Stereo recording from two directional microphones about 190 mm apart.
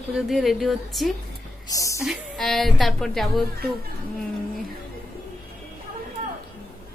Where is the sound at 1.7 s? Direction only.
15° left (ahead or behind).